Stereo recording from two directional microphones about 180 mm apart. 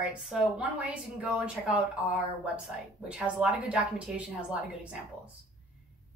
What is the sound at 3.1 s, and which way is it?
A woman's voice, 5° right (ahead or behind).